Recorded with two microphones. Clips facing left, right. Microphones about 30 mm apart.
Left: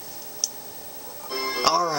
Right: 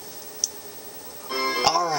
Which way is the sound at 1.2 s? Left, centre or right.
Centre.